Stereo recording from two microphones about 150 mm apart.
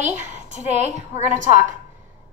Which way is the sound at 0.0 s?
50° right (ahead or behind).